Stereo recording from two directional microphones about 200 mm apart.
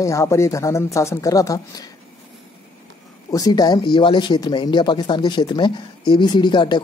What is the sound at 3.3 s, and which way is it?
Speech, 20° left (ahead or behind).